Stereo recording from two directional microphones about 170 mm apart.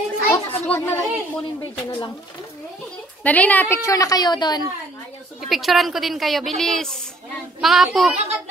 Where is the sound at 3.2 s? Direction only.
10° left (ahead or behind); by 4.6 s 25° left (ahead or behind).